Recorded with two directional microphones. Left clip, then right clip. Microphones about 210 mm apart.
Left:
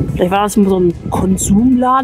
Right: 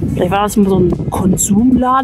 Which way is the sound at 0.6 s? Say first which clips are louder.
Even; 5° right (ahead or behind).